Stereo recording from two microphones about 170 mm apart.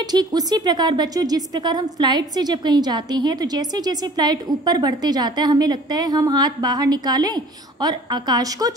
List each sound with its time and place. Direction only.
0.0 s a woman's voice: 25° right (ahead or behind)